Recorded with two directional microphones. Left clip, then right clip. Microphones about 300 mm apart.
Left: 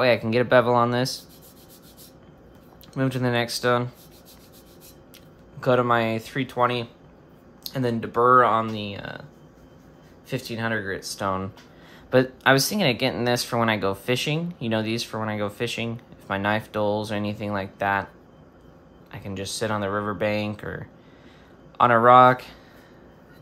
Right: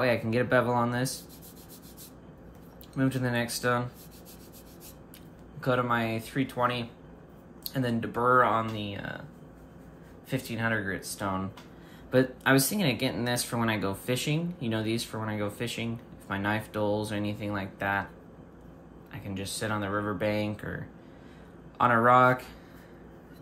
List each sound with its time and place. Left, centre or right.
0.0 s speech: centre
3.0 s speech: centre
5.6 s speech: centre
10.3 s speech: centre
19.1 s speech: centre
21.7 s speech: centre